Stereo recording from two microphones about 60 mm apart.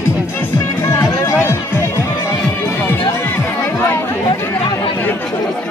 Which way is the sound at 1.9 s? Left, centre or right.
Left.